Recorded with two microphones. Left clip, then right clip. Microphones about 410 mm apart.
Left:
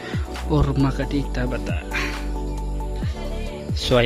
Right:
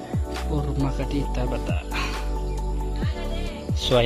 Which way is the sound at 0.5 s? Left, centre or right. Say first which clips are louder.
Left 8 dB; centre.